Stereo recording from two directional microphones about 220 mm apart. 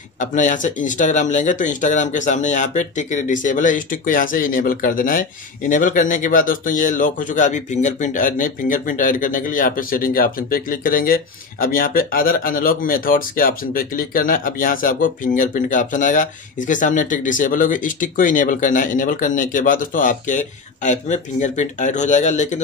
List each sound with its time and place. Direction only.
0.2 s speech: 35° left (ahead or behind)